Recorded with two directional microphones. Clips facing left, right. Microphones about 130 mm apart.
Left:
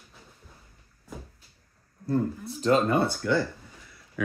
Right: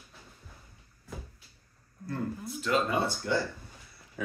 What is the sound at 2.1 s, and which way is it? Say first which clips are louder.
Speech: left 7 dB; 35° left (ahead or behind).